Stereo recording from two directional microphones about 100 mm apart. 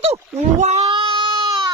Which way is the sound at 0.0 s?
90° right.